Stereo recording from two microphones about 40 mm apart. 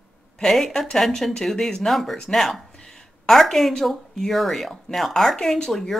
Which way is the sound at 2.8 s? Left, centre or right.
Centre.